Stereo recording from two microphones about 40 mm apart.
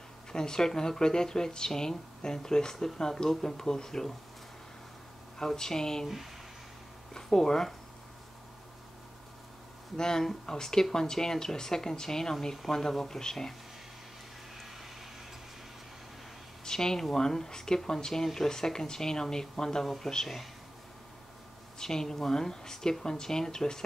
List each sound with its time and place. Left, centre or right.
0.3 s speech: centre
5.4 s speech: centre
7.2 s speech: centre
9.9 s speech: centre
16.6 s speech: centre
21.7 s speech: centre